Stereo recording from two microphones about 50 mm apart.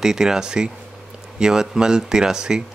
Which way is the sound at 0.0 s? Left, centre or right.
Centre.